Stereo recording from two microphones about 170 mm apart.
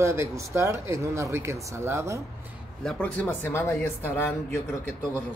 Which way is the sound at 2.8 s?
5° left (ahead or behind).